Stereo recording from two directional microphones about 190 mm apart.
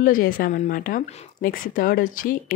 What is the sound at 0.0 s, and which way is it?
Speech, 45° left (ahead or behind).